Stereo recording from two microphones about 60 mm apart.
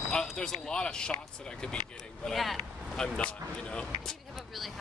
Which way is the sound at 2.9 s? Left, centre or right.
Centre.